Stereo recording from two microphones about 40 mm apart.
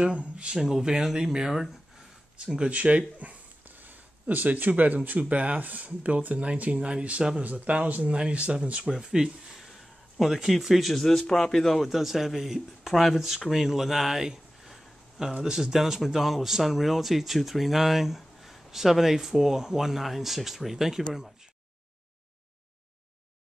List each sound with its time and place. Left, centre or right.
0.0 s speech: right
0.6 s speech: centre
2.7 s speech: right
9.0 s speech: centre
9.6 s speech: centre
11.9 s speech: centre